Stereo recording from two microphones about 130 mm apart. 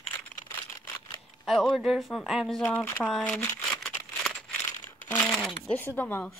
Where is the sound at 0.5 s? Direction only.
20° left (ahead or behind).